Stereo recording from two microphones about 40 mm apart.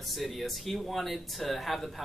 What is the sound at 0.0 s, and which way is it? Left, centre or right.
A man's voice, centre.